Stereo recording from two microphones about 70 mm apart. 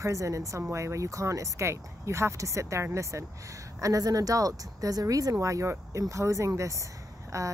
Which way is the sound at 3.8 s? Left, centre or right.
Right.